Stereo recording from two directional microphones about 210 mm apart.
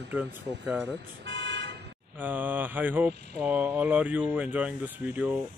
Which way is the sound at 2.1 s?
10° right (ahead or behind).